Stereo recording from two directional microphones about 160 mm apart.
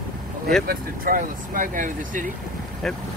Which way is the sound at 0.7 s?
60° right (ahead or behind).